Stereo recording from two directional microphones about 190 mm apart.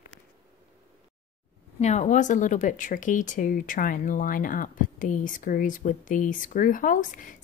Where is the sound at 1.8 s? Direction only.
35° left (ahead or behind).